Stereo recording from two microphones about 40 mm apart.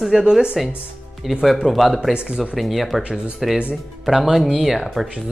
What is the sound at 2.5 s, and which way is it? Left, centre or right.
Speech, centre.